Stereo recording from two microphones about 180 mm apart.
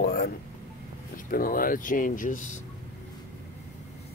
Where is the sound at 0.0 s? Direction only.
60° left (ahead or behind).